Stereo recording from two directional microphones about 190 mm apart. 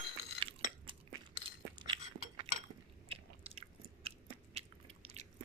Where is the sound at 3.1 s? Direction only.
30° right (ahead or behind).